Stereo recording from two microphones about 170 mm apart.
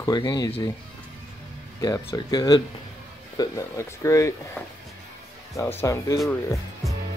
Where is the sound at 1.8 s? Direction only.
20° left (ahead or behind).